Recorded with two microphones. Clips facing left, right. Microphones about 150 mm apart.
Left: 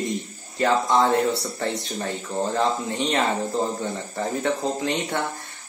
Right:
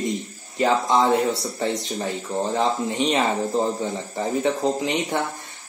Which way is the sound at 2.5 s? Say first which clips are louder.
Right 2 dB; 15° right (ahead or behind).